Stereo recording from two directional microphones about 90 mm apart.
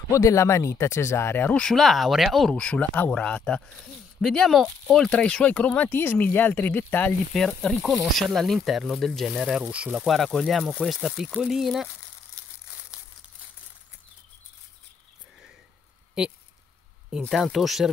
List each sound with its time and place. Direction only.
0.1 s speech: 35° left (ahead or behind)
1.6 s speech: 5° left (ahead or behind)
2.5 s speech: 10° left (ahead or behind)
5.0 s speech: 10° left (ahead or behind)
7.3 s speech: 5° left (ahead or behind)
9.7 s speech: 15° right (ahead or behind)
10.0 s speech: centre (ahead or behind)
12.4 s crumpling: 10° left (ahead or behind)
17.3 s speech: centre (ahead or behind)